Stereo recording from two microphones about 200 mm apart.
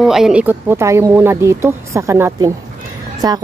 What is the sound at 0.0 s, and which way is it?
Speech, centre (ahead or behind).